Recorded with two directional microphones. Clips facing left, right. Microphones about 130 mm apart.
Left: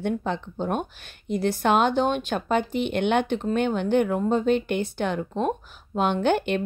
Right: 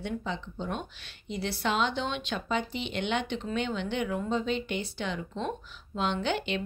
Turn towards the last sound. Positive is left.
turn(degrees=50)  # may be behind; listen again after turning